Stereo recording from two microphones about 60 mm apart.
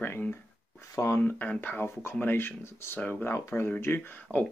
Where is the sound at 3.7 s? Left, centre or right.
Left.